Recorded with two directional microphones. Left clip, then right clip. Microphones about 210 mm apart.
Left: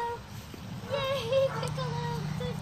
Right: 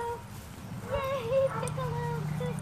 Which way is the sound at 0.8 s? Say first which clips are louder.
Left 1 dB; 50° left (ahead or behind).